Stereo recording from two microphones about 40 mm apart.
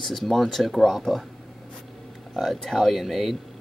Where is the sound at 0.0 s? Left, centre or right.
Centre.